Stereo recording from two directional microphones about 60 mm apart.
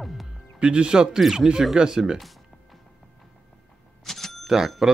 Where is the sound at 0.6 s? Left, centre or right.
Centre.